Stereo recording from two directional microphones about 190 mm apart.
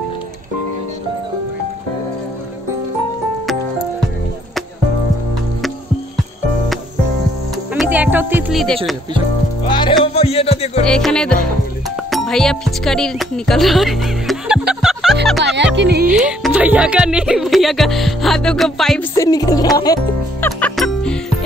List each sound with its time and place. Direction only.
7.7 s music: 5° right (ahead or behind)
9.7 s speech: 25° left (ahead or behind)
10.0 s music: 30° left (ahead or behind)
10.9 s speech: 5° left (ahead or behind)
14.7 s music: centre (ahead or behind)
15.4 s speech: 65° right (ahead or behind)
16.3 s speech: 5° right (ahead or behind)
19.1 s speech: 20° left (ahead or behind)
20.7 s music: 5° left (ahead or behind)